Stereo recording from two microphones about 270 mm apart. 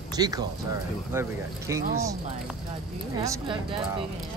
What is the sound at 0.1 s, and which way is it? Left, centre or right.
Speech, centre.